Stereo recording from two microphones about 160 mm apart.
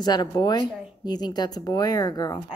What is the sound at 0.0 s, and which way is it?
Speech, 25° left (ahead or behind).